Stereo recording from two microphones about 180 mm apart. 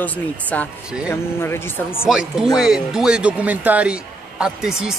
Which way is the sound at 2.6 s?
Centre (ahead or behind).